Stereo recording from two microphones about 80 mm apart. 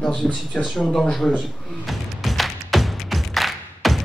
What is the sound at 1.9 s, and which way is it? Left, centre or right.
Music, centre.